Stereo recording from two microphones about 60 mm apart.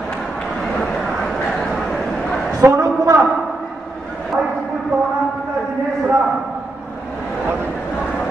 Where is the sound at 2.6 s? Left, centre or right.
Right.